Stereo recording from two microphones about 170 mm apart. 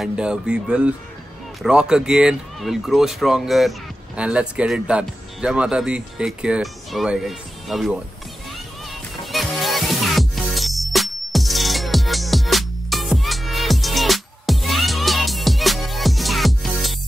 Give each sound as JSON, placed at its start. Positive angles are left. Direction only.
{"t": 0.0, "sound": "speech", "side_deg": -5}
{"t": 9.2, "sound": "music", "side_deg": 0}